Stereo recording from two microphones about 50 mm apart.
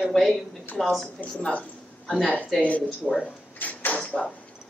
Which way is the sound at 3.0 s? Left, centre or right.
Centre.